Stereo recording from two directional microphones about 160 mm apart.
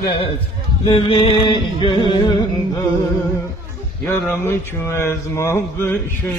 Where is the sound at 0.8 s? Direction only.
35° left (ahead or behind).